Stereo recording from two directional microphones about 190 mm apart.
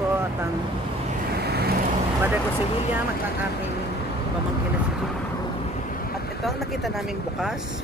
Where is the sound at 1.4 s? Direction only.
55° right (ahead or behind).